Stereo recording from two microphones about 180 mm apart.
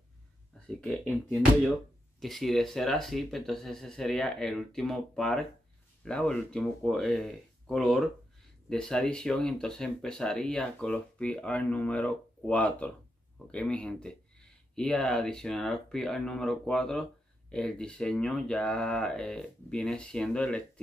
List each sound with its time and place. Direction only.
0.7 s speech: 5° left (ahead or behind)
2.1 s speech: centre (ahead or behind)